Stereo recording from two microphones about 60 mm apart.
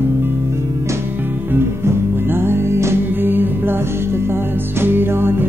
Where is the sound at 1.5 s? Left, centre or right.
Right.